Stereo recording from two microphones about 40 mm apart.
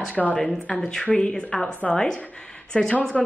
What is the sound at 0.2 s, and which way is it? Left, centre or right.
Speech, centre.